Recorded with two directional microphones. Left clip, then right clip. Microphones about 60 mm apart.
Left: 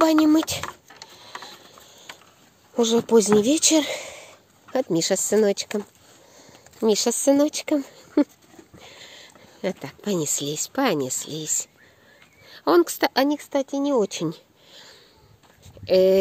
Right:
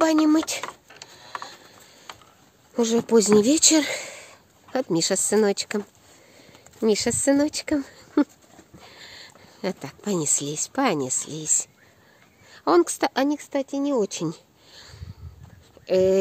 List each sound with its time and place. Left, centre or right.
0.0 s a sound: left
1.1 s mechanisms: left
2.7 s speech: centre
3.3 s speech: right; by 4.3 s centre
4.9 s speech: centre
6.9 s speech: centre
7.8 s a sound: centre
9.8 s speech: centre
13.6 s speech: left
13.9 s speech: left
14.2 s a sound: centre
15.8 s speech: left